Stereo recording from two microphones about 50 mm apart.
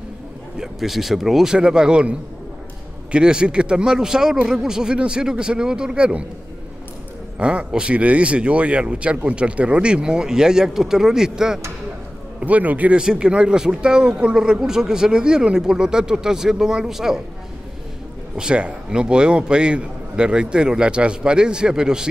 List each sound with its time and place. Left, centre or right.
0.6 s speech: centre
3.1 s speech: centre
7.3 s speech: right
12.4 s a man's voice: right
12.9 s speech: centre
18.3 s speech: centre